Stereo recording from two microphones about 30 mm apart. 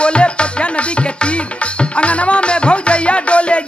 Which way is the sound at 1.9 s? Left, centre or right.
Left.